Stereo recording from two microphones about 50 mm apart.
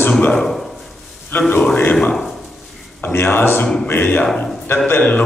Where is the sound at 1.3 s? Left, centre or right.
Left.